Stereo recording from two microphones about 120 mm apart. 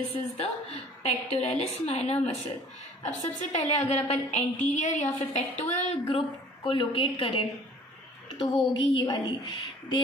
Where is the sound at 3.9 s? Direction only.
65° left (ahead or behind).